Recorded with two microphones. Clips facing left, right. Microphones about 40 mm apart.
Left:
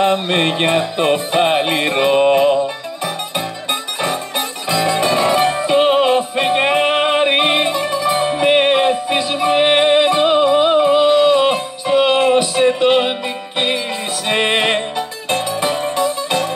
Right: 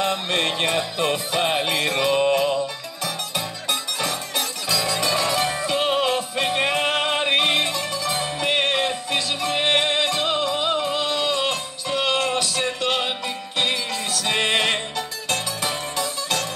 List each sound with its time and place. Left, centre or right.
0.0 s music: left
4.6 s music: left
14.2 s music: left